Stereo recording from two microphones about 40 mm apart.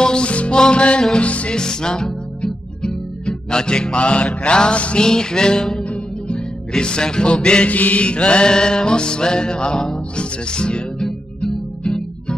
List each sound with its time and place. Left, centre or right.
0.0 s music: left
1.6 s music: centre
5.0 s music: centre
5.9 s music: left
7.7 s music: left